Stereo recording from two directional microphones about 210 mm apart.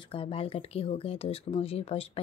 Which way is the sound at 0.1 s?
25° left (ahead or behind).